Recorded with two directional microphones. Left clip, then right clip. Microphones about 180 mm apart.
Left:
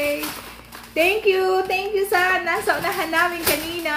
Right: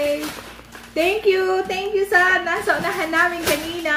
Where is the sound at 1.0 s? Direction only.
15° right (ahead or behind).